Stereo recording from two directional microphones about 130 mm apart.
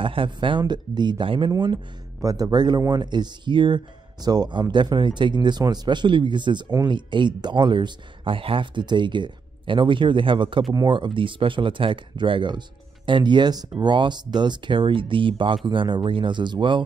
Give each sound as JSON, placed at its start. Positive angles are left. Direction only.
{"t": 0.0, "sound": "speech", "side_deg": -40}